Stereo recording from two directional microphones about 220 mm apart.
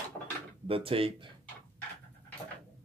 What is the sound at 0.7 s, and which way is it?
Speech, 25° right (ahead or behind).